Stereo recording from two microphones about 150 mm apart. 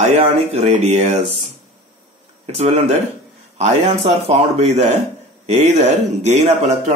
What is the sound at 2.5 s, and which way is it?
Speech, 45° right (ahead or behind).